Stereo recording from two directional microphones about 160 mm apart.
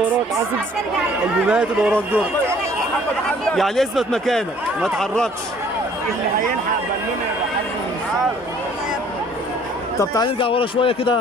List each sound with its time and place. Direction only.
1.5 s speech: 5° right (ahead or behind)
3.5 s speech: centre (ahead or behind)
9.9 s speech: 25° left (ahead or behind)